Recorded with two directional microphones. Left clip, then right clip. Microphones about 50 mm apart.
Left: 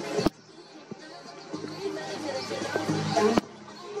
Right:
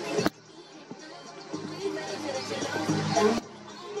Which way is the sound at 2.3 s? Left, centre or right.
Right.